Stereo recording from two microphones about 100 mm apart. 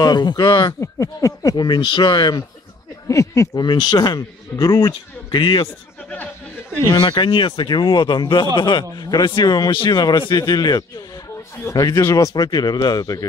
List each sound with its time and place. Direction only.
0.0 s a man's voice: 45° left (ahead or behind)
0.7 s a man's voice: 35° left (ahead or behind); by 2.4 s 50° left (ahead or behind)
3.1 s speech: 30° left (ahead or behind)
3.6 s a man's voice: 45° left (ahead or behind)
7.1 s a man's voice: 50° left (ahead or behind)
11.9 s speech: 30° left (ahead or behind)